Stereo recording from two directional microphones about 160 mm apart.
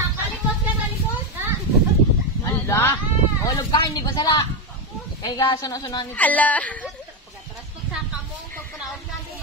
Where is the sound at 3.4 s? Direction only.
25° left (ahead or behind).